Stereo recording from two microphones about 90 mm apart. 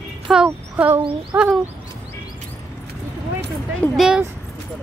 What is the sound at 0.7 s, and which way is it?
Speech, 20° right (ahead or behind).